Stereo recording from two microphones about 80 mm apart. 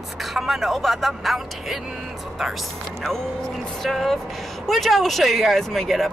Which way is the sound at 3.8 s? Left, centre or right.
Centre.